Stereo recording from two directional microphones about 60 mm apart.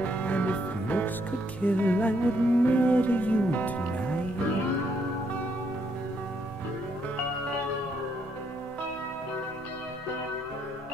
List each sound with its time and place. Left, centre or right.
0.0 s music: left